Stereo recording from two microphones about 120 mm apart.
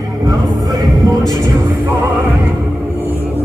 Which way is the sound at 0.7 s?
30° right (ahead or behind).